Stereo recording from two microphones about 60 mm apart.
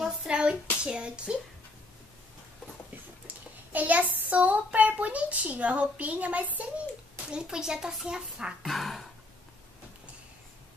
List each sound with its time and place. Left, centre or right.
0.0 s hands: centre
0.8 s speech: centre
3.7 s a child's voice: right
7.2 s speech: centre
8.6 s speech: centre